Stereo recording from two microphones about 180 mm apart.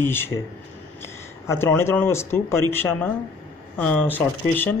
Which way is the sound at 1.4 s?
10° left (ahead or behind).